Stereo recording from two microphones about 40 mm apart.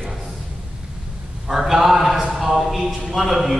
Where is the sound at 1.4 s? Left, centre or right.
Centre.